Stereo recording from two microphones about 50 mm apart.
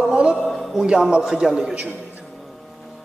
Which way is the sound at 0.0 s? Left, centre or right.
Centre.